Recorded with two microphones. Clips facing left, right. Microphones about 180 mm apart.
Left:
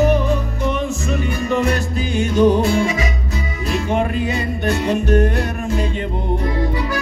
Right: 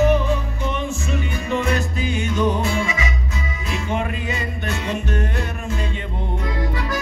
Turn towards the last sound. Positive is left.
turn(degrees=40)  # may be behind; listen again after turning